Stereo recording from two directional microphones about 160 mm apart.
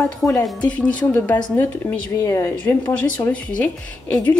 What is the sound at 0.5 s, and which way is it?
A woman's voice, 5° left (ahead or behind).